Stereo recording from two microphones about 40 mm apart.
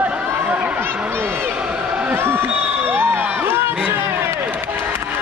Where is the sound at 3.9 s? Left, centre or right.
Right.